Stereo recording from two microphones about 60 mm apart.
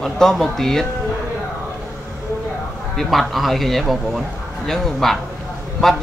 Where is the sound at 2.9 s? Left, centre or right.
Centre.